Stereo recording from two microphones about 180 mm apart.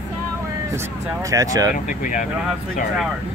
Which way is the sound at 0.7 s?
15° right (ahead or behind).